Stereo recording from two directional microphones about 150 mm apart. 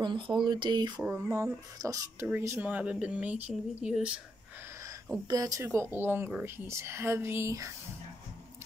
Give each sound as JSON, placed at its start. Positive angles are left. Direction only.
{"t": 0.0, "sound": "speech", "side_deg": -30}
{"t": 0.9, "sound": "speech", "side_deg": -15}
{"t": 5.3, "sound": "speech", "side_deg": -25}